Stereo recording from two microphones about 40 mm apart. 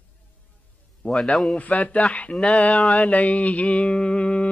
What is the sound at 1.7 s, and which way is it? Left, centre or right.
Music, left.